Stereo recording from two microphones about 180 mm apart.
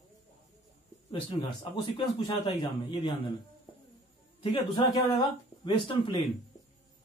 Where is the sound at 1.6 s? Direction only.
25° left (ahead or behind).